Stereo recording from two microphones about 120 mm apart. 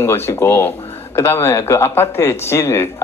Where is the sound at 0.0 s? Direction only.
20° left (ahead or behind).